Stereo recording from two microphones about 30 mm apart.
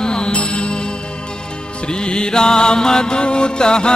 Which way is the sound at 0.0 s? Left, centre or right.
Left.